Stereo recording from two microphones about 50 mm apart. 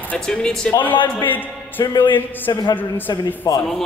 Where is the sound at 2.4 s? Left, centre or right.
Left.